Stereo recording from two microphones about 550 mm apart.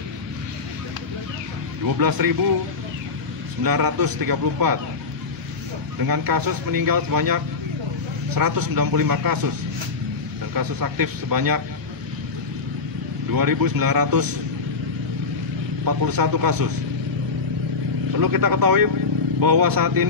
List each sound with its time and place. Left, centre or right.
2.0 s speech: right
3.6 s speech: right
6.0 s speech: right
10.5 s speech: right
13.3 s speech: right
15.8 s speech: right
18.1 s speech: right